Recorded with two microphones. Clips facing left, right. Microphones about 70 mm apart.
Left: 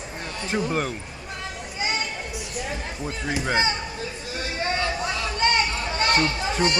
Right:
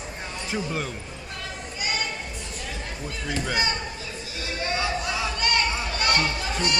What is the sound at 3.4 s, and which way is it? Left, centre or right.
Speech, left.